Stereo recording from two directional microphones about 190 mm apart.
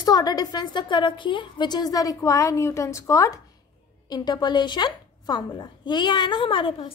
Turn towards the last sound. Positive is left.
turn(degrees=25)  # may be behind; listen again after turning